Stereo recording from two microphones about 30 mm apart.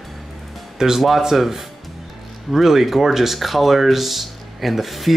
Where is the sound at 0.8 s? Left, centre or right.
Centre.